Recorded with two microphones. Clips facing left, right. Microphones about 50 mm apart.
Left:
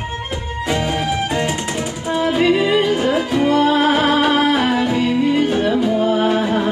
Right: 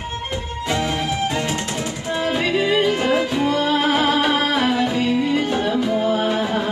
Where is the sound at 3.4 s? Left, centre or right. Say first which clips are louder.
Left 4 dB; left.